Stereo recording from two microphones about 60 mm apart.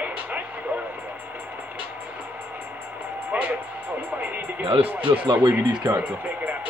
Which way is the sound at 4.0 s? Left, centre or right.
Right.